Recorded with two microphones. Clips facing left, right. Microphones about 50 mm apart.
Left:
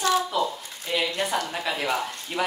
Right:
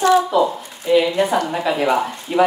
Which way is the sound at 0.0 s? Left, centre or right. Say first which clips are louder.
Right 9 dB; right.